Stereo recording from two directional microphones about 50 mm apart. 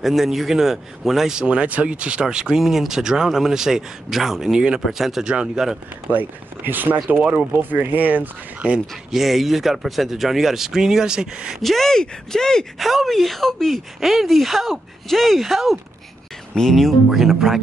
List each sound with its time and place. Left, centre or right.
0.0 s speech: centre
1.4 s speech: right; by 5.2 s centre
5.2 s speech: centre
6.0 s speech: right
9.1 s speech: centre
11.6 s speech: centre
12.7 s speech: centre